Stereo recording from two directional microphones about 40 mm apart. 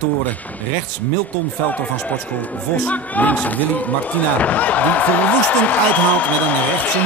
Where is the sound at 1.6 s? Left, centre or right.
Left.